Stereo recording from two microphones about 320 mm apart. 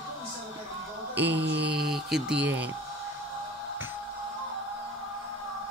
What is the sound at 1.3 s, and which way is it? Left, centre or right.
Mantra, right.